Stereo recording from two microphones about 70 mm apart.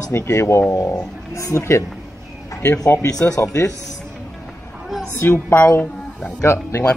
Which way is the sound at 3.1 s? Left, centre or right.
Left.